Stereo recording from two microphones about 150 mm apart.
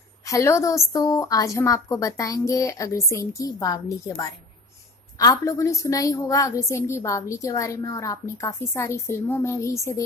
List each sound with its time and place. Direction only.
0.3 s a woman's voice: 20° left (ahead or behind)